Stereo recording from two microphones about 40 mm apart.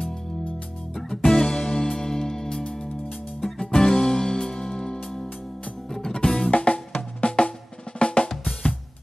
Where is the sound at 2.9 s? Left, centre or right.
Centre.